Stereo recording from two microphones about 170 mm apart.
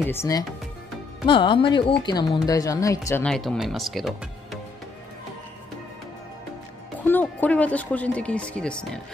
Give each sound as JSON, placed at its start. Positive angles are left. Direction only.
{"t": 0.0, "sound": "speech", "side_deg": 15}
{"t": 1.2, "sound": "speech", "side_deg": 30}
{"t": 3.3, "sound": "speech", "side_deg": 0}
{"t": 7.0, "sound": "speech", "side_deg": 10}